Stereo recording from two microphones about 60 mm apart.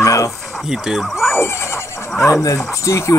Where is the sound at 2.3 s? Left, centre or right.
Left.